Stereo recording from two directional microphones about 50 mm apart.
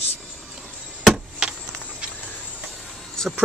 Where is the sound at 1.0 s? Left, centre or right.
Centre.